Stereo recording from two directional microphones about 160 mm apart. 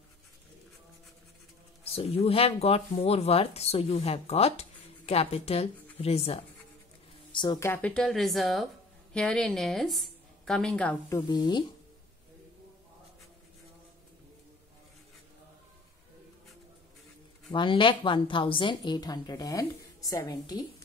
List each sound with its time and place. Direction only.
1.9 s speech: 40° left (ahead or behind)
7.3 s a woman's voice: 25° left (ahead or behind)
7.7 s a woman's voice: 5° left (ahead or behind)
11.1 s a woman's voice: 25° left (ahead or behind)
17.5 s a woman's voice: 30° left (ahead or behind)